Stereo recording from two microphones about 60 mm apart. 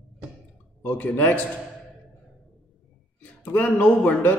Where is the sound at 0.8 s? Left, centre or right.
Left.